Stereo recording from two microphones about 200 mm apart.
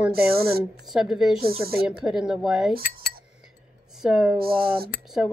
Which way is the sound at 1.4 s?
50° right (ahead or behind).